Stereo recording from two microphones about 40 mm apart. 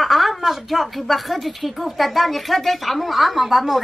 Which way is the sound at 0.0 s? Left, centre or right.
Centre.